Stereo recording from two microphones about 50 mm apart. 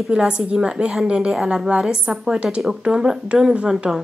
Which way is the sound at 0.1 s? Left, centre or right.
Centre.